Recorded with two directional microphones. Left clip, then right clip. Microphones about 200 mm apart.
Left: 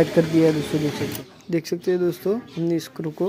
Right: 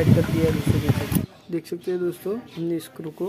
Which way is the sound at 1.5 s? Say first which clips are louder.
Left 5 dB; 15° left (ahead or behind).